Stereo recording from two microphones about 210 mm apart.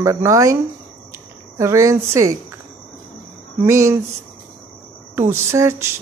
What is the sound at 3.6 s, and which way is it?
Speech, 15° right (ahead or behind).